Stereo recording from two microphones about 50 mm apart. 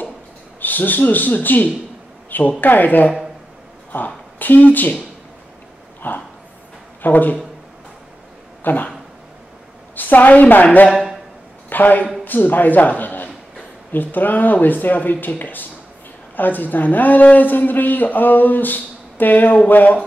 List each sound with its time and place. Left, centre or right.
0.6 s a man's voice: left
2.2 s a sound: left
2.6 s a man's voice: left
6.0 s dog: left
7.0 s speech: left
8.6 s speech: left
9.9 s a woman's voice: left